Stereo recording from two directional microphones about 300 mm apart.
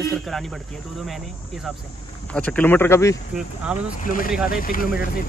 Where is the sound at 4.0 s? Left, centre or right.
Left.